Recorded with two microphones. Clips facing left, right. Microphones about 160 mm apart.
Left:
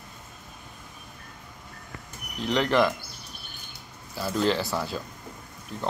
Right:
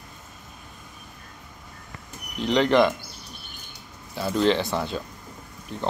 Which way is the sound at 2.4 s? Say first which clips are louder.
Right 4 dB; centre (ahead or behind).